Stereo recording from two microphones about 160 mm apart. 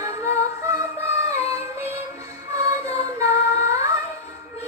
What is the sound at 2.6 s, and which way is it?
Singing, 20° right (ahead or behind).